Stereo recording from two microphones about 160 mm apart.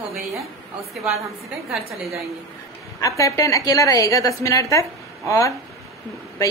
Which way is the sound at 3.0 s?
20° left (ahead or behind).